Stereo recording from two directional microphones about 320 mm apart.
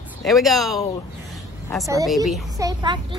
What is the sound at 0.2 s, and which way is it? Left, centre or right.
Speech, centre.